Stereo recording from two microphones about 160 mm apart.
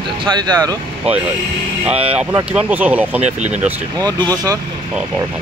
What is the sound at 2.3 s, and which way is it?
Speech, 10° right (ahead or behind).